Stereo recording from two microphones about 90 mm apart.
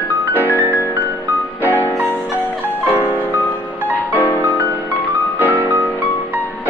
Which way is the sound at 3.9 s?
20° left (ahead or behind).